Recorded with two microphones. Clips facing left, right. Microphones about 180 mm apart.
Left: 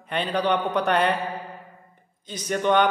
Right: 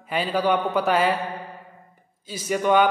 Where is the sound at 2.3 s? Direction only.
5° right (ahead or behind).